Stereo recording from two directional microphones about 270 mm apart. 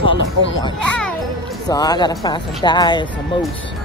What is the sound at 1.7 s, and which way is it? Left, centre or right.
Speech, centre.